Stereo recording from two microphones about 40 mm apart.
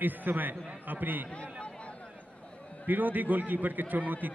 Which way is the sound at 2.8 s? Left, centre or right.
Right.